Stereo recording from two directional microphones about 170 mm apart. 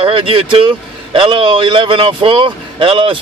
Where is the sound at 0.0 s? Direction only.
30° right (ahead or behind).